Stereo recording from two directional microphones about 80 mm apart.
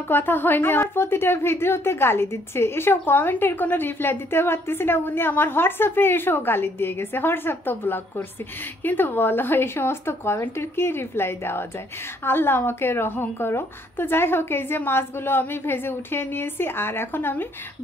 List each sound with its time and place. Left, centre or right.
0.1 s a woman's voice: left